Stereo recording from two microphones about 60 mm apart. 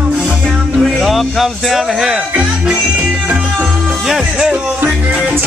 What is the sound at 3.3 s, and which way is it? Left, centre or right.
Music, centre.